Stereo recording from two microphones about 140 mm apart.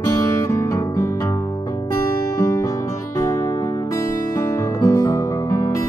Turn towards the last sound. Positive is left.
turn(degrees=25)  # may be behind; listen again after turning